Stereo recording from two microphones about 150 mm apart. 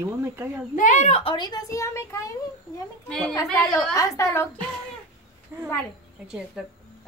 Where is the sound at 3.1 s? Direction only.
Centre (ahead or behind).